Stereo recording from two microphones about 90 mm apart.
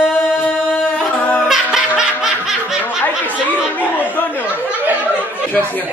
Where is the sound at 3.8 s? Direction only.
20° left (ahead or behind).